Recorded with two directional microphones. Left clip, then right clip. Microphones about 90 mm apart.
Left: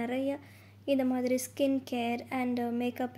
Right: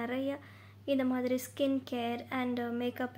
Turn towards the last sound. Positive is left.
turn(degrees=20)  # may be behind; listen again after turning